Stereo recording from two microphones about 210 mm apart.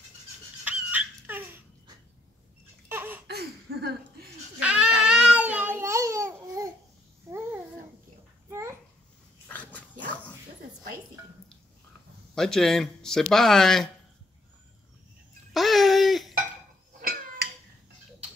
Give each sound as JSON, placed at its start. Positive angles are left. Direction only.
{"t": 0.7, "sound": "baby laughter", "side_deg": -10}
{"t": 2.9, "sound": "laughter", "side_deg": -10}
{"t": 3.3, "sound": "a sound", "side_deg": -50}
{"t": 4.6, "sound": "babbling", "side_deg": -5}
{"t": 9.5, "sound": "dog", "side_deg": 5}
{"t": 12.4, "sound": "speech", "side_deg": 0}
{"t": 15.5, "sound": "laughter", "side_deg": 0}
{"t": 17.0, "sound": "a sound", "side_deg": -45}